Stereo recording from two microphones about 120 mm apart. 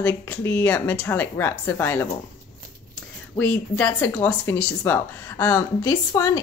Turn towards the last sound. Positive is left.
turn(degrees=30)  # may be behind; listen again after turning